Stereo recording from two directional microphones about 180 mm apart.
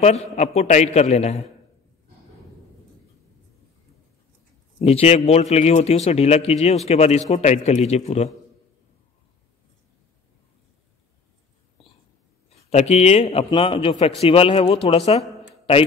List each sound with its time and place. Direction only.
0.0 s a man's voice: 40° left (ahead or behind)
4.7 s a man's voice: 35° left (ahead or behind)
12.4 s a man's voice: 35° left (ahead or behind)